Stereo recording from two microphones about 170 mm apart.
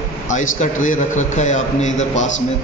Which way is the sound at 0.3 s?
45° left (ahead or behind).